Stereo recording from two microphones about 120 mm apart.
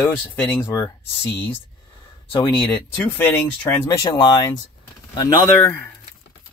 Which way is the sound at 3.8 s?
30° left (ahead or behind).